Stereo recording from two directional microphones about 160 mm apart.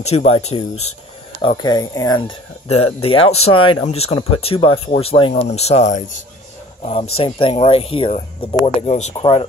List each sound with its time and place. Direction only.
0.0 s speech: 40° left (ahead or behind)
1.6 s speech: 25° left (ahead or behind); by 9.1 s 45° left (ahead or behind)
9.1 s speech: 35° left (ahead or behind)